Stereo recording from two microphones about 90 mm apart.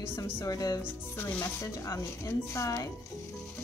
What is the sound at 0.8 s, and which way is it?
Speech, 25° left (ahead or behind).